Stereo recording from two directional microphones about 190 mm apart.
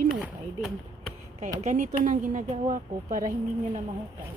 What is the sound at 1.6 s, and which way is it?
Speech, 40° right (ahead or behind).